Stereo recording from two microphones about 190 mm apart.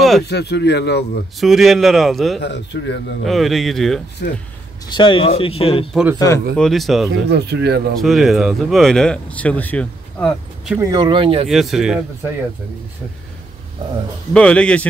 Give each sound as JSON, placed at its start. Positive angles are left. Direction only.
{"t": 0.2, "sound": "a man's voice", "side_deg": 60}
{"t": 1.4, "sound": "speech", "side_deg": 0}
{"t": 2.4, "sound": "speech", "side_deg": 65}
{"t": 3.3, "sound": "speech", "side_deg": 0}
{"t": 4.2, "sound": "a man's voice", "side_deg": 60}
{"t": 4.8, "sound": "speech", "side_deg": 25}
{"t": 6.1, "sound": "speech", "side_deg": 15}
{"t": 6.5, "sound": "speech", "side_deg": 0}
{"t": 7.2, "sound": "speech", "side_deg": -60}
{"t": 8.0, "sound": "speech", "side_deg": 0}
{"t": 10.8, "sound": "speech", "side_deg": -20}
{"t": 11.4, "sound": "speech", "side_deg": 0}
{"t": 14.3, "sound": "speech", "side_deg": 5}